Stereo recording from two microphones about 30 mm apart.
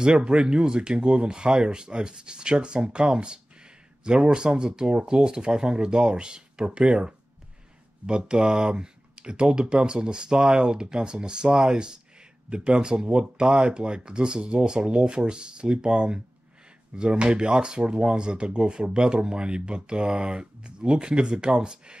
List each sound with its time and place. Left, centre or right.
0.0 s speech: right
8.3 s speech: right